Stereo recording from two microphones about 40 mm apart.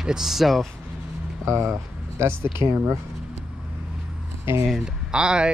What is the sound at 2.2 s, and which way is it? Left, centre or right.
Speech, right.